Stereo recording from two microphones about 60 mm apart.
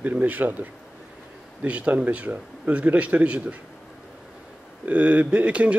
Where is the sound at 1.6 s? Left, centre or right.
Right.